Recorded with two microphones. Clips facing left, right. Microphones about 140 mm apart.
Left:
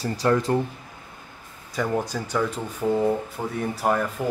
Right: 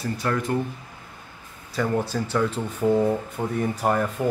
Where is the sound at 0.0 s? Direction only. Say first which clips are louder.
Left 4 dB; 35° left (ahead or behind).